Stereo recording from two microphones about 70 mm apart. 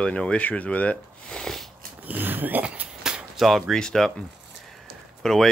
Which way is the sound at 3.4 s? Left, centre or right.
Centre.